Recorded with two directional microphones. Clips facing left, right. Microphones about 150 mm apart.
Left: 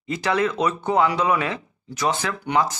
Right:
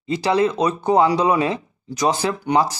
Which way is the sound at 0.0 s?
30° right (ahead or behind).